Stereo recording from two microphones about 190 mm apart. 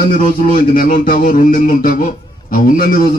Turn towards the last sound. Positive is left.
turn(degrees=50)  # may be behind; listen again after turning